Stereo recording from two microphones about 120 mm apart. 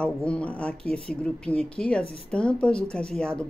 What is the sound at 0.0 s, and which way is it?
Speech, 10° left (ahead or behind).